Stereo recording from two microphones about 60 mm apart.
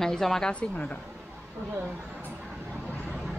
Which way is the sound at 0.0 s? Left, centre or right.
Centre.